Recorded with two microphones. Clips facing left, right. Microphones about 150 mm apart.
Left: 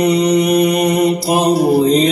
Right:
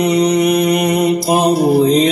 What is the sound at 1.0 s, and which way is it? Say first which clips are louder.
Mantra: right 1 dB; 55° right (ahead or behind).